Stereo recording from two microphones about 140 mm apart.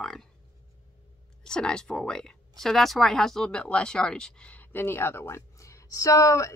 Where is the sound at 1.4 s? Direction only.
5° left (ahead or behind).